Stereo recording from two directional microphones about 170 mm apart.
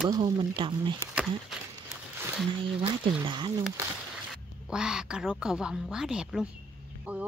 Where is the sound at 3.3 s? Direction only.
30° right (ahead or behind).